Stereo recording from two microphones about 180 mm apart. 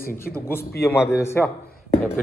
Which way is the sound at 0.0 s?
55° left (ahead or behind).